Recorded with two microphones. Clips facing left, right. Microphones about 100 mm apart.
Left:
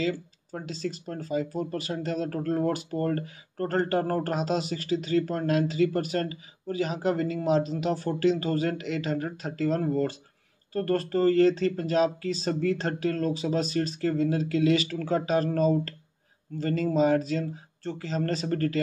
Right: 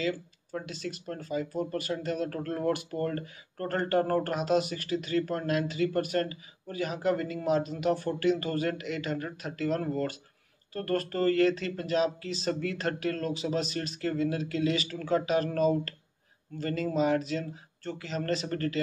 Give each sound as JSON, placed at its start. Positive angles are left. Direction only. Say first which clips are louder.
{"t": 0.0, "sound": "speech", "louder": "left 3 dB", "side_deg": 35}
{"t": 5.8, "sound": "speech", "louder": "left 3 dB", "side_deg": -50}
{"t": 6.8, "sound": "speech", "louder": "left 2 dB", "side_deg": 35}